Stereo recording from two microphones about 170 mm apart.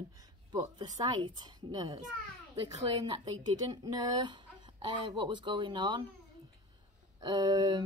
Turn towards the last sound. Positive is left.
turn(degrees=-25)  # may be behind; listen again after turning